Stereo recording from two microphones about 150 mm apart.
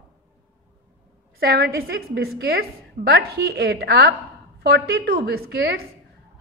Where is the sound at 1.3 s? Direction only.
90° right.